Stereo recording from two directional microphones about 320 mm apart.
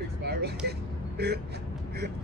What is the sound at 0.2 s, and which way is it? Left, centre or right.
Vehicle, right.